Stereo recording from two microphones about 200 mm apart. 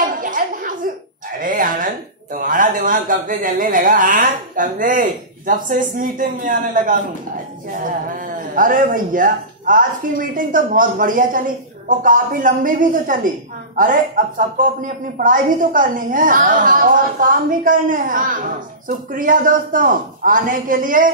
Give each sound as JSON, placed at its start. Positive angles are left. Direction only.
{"t": 0.0, "sound": "a sound", "side_deg": -45}
{"t": 2.3, "sound": "speech", "side_deg": -45}
{"t": 8.5, "sound": "speech", "side_deg": -40}